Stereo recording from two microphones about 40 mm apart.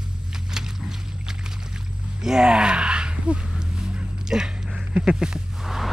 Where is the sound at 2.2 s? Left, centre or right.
Centre.